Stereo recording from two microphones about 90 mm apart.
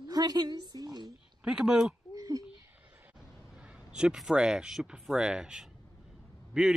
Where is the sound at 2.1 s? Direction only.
40° right (ahead or behind).